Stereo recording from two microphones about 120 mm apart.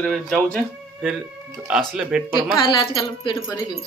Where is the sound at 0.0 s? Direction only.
5° left (ahead or behind).